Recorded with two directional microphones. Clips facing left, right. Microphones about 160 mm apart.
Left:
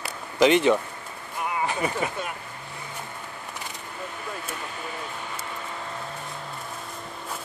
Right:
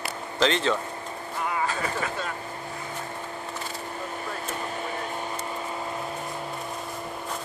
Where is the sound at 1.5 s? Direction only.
15° left (ahead or behind).